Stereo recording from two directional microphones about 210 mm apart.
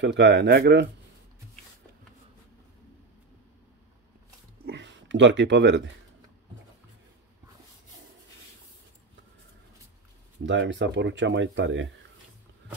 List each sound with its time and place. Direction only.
0.0 s speech: 55° right (ahead or behind)
4.6 s a sound: 60° right (ahead or behind)
10.4 s speech: 60° right (ahead or behind)